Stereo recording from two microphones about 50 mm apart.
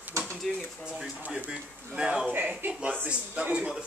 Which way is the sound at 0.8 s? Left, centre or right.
Centre.